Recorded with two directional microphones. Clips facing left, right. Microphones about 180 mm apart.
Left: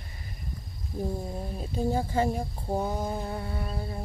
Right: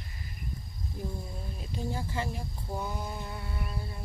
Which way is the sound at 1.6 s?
45° left (ahead or behind).